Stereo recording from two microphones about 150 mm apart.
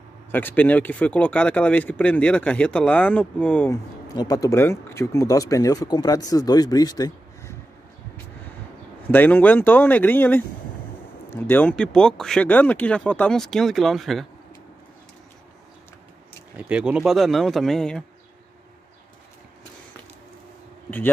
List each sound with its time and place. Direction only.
0.3 s speech: 15° left (ahead or behind)
3.7 s speech: 25° left (ahead or behind)
9.0 s speech: 10° left (ahead or behind)
16.5 s speech: 5° right (ahead or behind)